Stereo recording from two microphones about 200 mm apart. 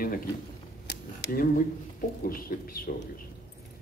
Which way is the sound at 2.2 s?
45° left (ahead or behind).